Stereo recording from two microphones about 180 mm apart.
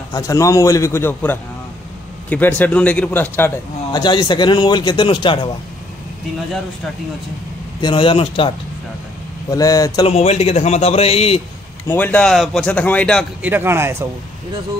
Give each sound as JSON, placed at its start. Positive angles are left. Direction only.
{"t": 0.1, "sound": "a man's voice", "side_deg": 20}
{"t": 4.0, "sound": "a man's voice", "side_deg": 25}
{"t": 7.8, "sound": "a man's voice", "side_deg": 30}
{"t": 10.0, "sound": "a man's voice", "side_deg": 35}
{"t": 11.9, "sound": "speech", "side_deg": 10}
{"t": 13.4, "sound": "speech", "side_deg": -10}